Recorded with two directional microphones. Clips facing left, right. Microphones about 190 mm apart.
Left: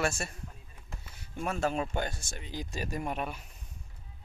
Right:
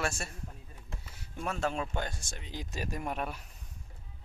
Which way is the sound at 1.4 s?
5° left (ahead or behind).